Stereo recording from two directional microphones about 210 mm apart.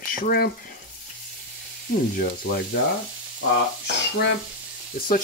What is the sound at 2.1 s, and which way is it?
Speech, 45° left (ahead or behind).